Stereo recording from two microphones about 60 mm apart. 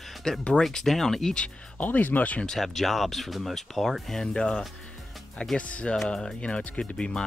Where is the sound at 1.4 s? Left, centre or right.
Left.